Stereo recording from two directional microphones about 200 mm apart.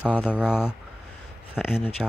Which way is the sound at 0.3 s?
5° right (ahead or behind).